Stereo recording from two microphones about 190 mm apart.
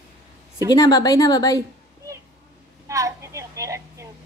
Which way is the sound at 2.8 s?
15° right (ahead or behind).